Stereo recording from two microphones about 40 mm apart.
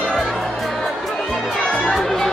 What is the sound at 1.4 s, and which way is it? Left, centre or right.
Chatter, centre.